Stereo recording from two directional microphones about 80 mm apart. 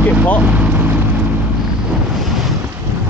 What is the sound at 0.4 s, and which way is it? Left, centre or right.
Vehicle, centre.